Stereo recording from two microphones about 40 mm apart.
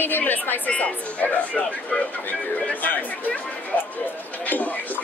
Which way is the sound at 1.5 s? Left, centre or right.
Left.